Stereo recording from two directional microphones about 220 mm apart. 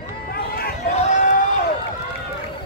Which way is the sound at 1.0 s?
30° left (ahead or behind).